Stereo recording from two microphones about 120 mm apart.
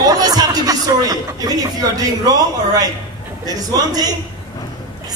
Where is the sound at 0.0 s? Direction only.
30° right (ahead or behind).